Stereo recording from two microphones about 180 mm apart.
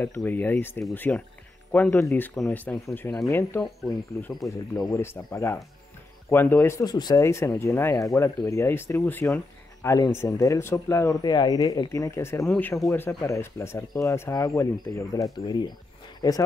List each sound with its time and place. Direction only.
0.0 s speech: 10° left (ahead or behind)